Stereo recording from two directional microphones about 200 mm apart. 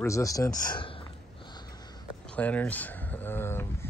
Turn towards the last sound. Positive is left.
turn(degrees=10)  # may be behind; listen again after turning